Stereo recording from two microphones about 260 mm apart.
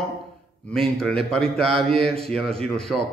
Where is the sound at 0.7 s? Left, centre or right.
Centre.